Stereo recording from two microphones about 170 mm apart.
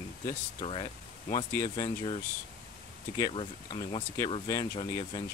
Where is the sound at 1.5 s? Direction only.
25° left (ahead or behind).